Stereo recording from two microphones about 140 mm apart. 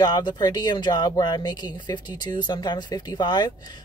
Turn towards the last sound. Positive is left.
turn(degrees=30)  # may be behind; listen again after turning